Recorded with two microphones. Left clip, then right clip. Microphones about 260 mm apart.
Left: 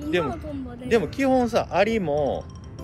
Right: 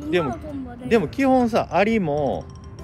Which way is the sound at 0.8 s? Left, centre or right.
Right.